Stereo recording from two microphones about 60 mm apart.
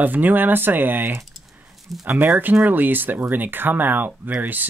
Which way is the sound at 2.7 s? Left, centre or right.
Right.